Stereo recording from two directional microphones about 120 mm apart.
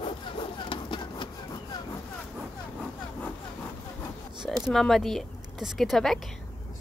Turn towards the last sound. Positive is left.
turn(degrees=0)  # may be behind; listen again after turning